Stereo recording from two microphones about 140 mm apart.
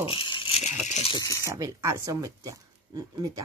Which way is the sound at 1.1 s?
25° left (ahead or behind).